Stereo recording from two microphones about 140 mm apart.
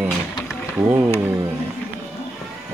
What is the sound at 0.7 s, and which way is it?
Speech, 20° right (ahead or behind).